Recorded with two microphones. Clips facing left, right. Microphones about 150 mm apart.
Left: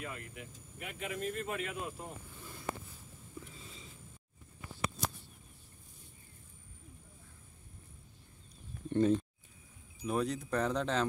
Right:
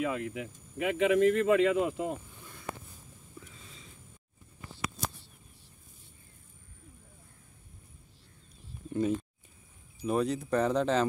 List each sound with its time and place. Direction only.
0.0 s speech: 90° right
8.8 s speech: 5° right (ahead or behind)